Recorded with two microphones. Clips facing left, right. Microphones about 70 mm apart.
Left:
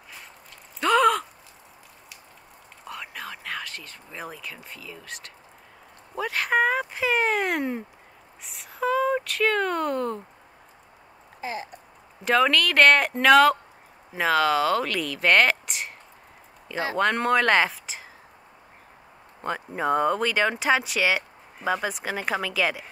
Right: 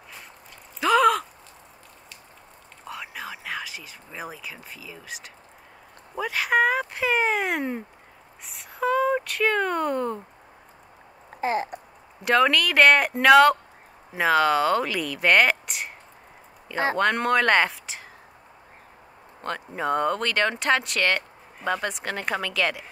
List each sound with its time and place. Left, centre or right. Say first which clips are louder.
0.7 s a sound: right 1 dB; centre
2.9 s speech: right 1 dB; centre
11.4 s a sound: right 8 dB; right
12.3 s speech: right 1 dB; centre
16.9 s speech: left 1 dB; centre
19.4 s speech: left 1 dB; centre